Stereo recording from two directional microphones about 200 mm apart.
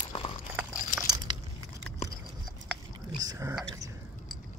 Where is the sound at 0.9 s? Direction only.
20° right (ahead or behind).